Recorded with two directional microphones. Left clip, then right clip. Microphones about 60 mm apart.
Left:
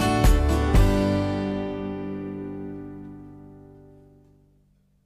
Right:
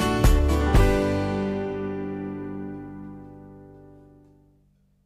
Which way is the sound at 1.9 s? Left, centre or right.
Centre.